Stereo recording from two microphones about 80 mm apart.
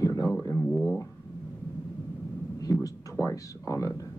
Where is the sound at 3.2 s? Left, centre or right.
Left.